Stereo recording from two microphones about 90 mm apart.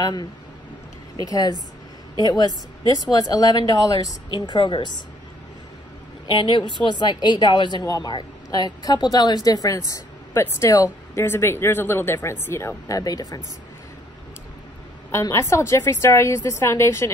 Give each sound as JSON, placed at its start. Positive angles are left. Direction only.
{"t": 0.0, "sound": "a woman's voice", "side_deg": 50}
{"t": 4.3, "sound": "speech", "side_deg": 60}
{"t": 6.2, "sound": "a woman's voice", "side_deg": 60}
{"t": 11.2, "sound": "speech", "side_deg": 25}
{"t": 15.0, "sound": "a woman's voice", "side_deg": 30}